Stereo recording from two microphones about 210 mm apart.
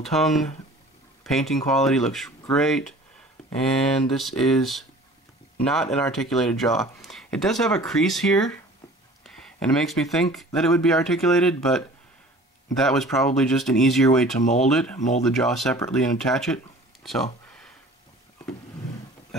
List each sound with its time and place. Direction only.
0.0 s speech: centre (ahead or behind)
14.4 s speech: 35° left (ahead or behind)
14.7 s speech: 5° left (ahead or behind)
15.0 s speech: 35° left (ahead or behind)
15.2 s speech: centre (ahead or behind)
17.0 s a sound: centre (ahead or behind)